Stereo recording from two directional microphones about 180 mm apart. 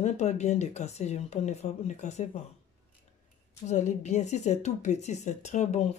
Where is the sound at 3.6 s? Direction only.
40° left (ahead or behind).